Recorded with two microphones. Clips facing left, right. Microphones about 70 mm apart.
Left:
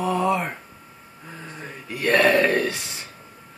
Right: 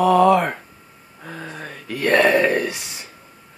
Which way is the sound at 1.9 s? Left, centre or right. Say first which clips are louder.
Right 2 dB; right.